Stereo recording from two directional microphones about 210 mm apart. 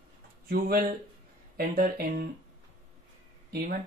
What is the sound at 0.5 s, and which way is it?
Speech, 45° right (ahead or behind).